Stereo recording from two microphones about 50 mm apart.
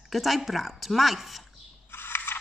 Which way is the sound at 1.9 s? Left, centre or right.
Left.